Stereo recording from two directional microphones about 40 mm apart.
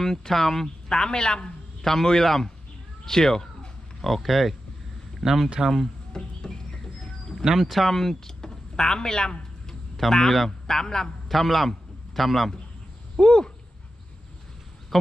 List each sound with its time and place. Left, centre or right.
0.0 s a man's voice: centre
4.0 s speech: centre
6.1 s a sound: centre
7.4 s speech: centre
10.1 s a man's voice: centre
11.2 s a man's voice: centre
13.2 s speech: centre